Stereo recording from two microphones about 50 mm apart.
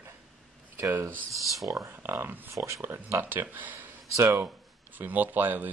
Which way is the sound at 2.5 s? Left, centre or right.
Right.